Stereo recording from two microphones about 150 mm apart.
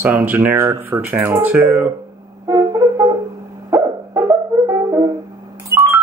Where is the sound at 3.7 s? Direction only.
20° right (ahead or behind).